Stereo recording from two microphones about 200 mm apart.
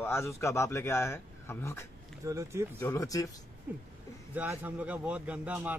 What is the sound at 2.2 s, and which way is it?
Speech, 15° right (ahead or behind).